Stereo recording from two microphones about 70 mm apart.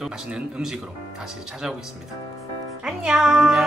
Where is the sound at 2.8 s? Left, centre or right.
Centre.